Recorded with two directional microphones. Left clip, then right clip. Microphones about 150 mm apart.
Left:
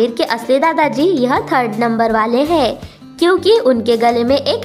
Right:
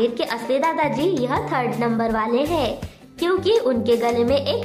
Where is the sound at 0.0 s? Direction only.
45° left (ahead or behind).